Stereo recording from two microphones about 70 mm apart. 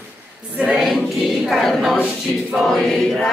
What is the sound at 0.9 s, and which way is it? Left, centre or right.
Choir, centre.